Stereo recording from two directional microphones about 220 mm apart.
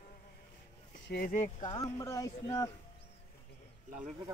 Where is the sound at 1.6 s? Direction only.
15° left (ahead or behind).